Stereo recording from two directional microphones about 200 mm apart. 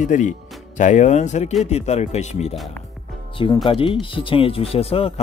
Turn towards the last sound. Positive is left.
turn(degrees=30)  # may be behind; listen again after turning